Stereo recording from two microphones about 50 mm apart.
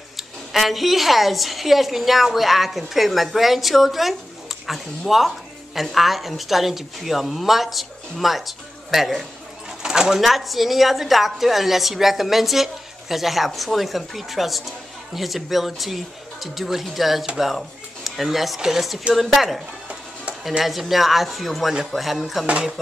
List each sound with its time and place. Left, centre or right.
0.5 s speech: centre
20.6 s speech: centre
22.5 s speech: centre